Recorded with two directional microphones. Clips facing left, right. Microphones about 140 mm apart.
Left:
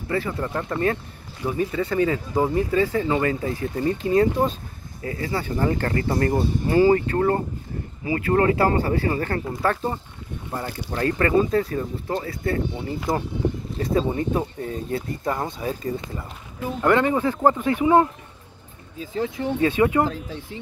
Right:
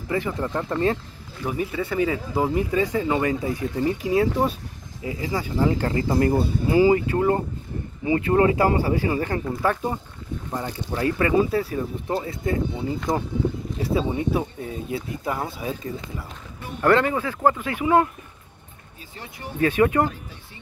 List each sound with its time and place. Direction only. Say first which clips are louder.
0.1 s speech: even; 15° right (ahead or behind)
8.0 s speech: right 2 dB; 25° right (ahead or behind)
13.1 s speech: left 1 dB; centre (ahead or behind)
16.8 s speech: even; 15° left (ahead or behind)
19.6 s speech: right 1 dB; 20° left (ahead or behind)
20.1 s speech: left 6 dB; 90° left